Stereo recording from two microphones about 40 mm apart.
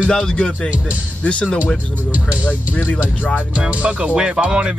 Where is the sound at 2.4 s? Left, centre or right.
Left.